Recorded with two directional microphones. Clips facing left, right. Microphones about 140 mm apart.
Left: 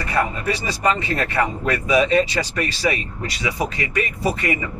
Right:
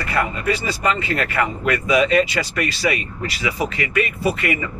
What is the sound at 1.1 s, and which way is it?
Speech, 30° left (ahead or behind).